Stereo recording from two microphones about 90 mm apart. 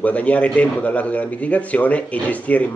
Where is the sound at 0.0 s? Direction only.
15° left (ahead or behind).